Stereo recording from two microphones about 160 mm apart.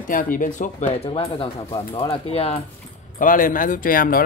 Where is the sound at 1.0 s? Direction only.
35° left (ahead or behind).